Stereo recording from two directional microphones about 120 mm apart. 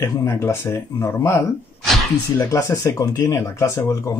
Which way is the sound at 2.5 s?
25° left (ahead or behind).